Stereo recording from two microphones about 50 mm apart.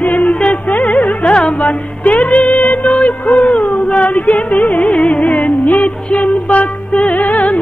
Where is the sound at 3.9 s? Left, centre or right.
Left.